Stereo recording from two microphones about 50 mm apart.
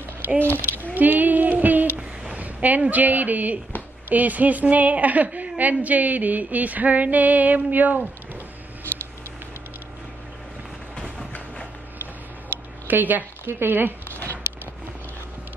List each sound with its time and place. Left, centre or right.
0.4 s speech: left
0.9 s female singing: right
2.3 s a woman's voice: right
8.9 s a sound: right
12.8 s speech: right